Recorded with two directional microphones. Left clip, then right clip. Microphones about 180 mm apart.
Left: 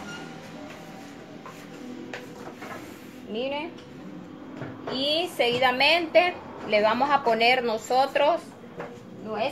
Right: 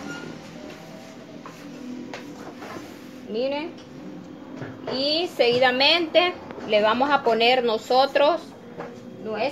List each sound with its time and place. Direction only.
3.3 s a woman's voice: 40° right (ahead or behind)
5.0 s a woman's voice: 40° right (ahead or behind)